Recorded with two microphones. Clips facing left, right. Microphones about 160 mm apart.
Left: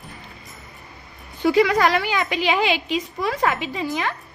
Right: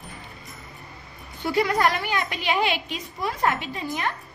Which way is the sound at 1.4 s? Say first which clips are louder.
Left 5 dB; 90° left.